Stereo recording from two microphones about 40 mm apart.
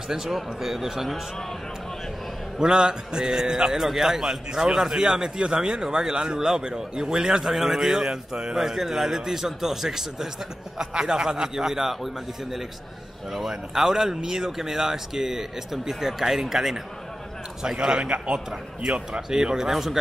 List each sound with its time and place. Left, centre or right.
0.1 s speech: centre
2.6 s a man's voice: centre
8.5 s a man's voice: centre
13.3 s a man's voice: centre
17.7 s a man's voice: right
19.3 s a man's voice: centre